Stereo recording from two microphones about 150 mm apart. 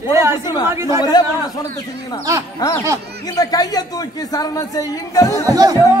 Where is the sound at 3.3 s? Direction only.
25° left (ahead or behind).